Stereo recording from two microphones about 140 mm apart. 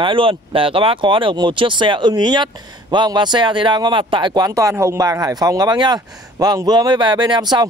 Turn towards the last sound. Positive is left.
turn(degrees=-30)  # may be behind; listen again after turning